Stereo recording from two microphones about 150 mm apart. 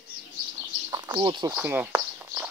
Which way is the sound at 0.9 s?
30° right (ahead or behind).